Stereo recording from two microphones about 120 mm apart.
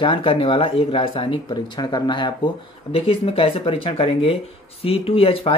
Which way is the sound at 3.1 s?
50° left (ahead or behind).